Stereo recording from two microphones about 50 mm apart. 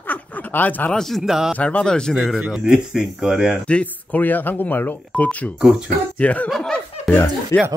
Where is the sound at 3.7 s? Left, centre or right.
Left.